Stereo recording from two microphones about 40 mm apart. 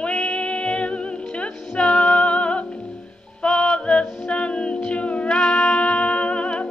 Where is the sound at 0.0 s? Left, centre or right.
Left.